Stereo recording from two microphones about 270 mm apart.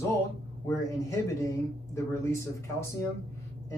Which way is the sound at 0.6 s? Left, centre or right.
Centre.